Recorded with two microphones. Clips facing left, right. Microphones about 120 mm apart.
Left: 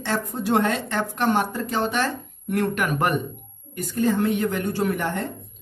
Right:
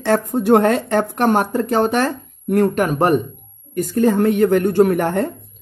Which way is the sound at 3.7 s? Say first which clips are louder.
Right 6 dB; 50° right (ahead or behind).